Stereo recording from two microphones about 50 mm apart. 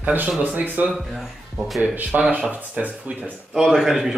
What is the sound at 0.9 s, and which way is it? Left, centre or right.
Speech, centre.